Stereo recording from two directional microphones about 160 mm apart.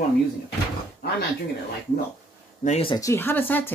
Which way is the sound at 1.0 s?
75° left (ahead or behind).